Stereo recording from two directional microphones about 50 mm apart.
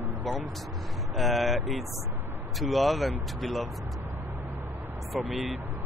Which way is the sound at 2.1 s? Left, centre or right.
Right.